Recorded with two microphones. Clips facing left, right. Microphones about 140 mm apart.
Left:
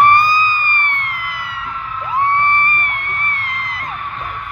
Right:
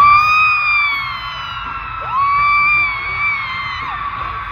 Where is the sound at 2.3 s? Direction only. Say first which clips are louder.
Even; 20° right (ahead or behind).